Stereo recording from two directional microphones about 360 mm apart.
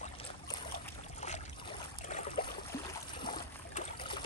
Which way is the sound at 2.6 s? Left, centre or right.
Centre.